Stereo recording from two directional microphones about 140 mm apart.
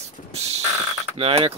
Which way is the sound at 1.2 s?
45° right (ahead or behind).